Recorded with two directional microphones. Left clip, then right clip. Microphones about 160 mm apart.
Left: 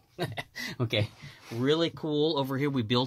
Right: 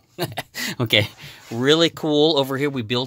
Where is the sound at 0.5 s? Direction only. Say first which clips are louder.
Right 13 dB; 65° right (ahead or behind); by 2.6 s 45° right (ahead or behind).